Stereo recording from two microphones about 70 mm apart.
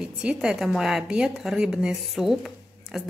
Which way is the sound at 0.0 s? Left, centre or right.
Centre.